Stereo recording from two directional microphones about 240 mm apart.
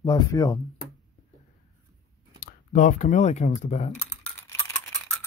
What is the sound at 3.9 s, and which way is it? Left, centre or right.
Typing, centre.